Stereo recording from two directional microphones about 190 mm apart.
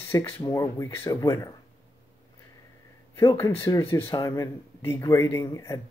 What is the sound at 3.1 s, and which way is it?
Speech, 15° left (ahead or behind).